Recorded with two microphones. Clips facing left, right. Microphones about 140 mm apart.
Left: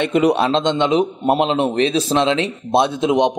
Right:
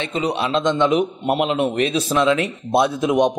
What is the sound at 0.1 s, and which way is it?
Speech, 65° left (ahead or behind).